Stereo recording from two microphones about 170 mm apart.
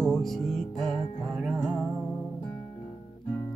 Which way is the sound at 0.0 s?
Centre (ahead or behind).